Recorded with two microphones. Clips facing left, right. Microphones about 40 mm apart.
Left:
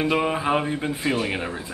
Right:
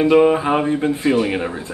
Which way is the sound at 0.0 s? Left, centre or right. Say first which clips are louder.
Right 9 dB; centre.